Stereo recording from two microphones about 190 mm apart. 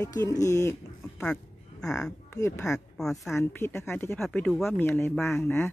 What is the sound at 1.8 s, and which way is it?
Speech, 5° left (ahead or behind).